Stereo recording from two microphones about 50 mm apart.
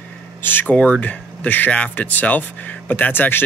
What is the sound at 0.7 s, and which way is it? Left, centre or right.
Speech, left.